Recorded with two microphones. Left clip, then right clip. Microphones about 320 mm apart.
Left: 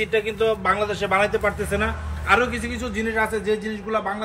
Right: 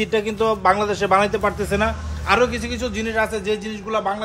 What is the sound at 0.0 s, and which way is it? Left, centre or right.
A man's voice, right.